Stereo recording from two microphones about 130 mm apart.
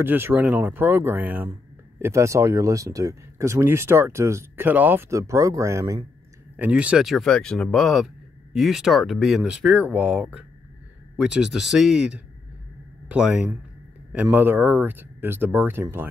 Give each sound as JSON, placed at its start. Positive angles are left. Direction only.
{"t": 0.0, "sound": "speech", "side_deg": -15}
{"t": 6.5, "sound": "speech", "side_deg": -10}